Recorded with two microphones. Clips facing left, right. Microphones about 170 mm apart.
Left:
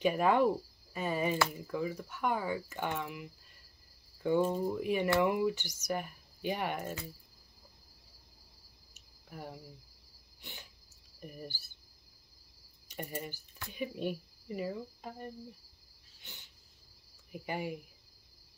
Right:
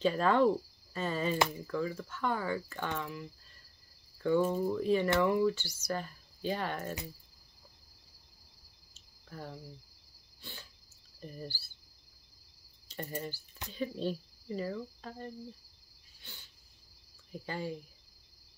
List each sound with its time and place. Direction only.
0.0 s speech: 15° left (ahead or behind)
4.5 s speech: 15° left (ahead or behind)
8.9 s cricket: 15° left (ahead or behind)
10.4 s a sound: 20° left (ahead or behind)
11.1 s speech: 15° left (ahead or behind)
12.8 s speech: 10° left (ahead or behind)
16.2 s cricket: 20° left (ahead or behind)
17.3 s speech: 15° left (ahead or behind)